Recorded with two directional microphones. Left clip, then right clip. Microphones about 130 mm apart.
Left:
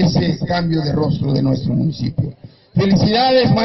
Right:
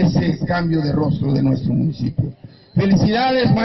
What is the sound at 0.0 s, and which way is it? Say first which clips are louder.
A man's voice: left 2 dB; 25° left (ahead or behind).